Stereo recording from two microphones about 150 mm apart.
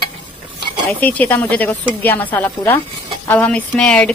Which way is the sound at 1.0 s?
10° left (ahead or behind).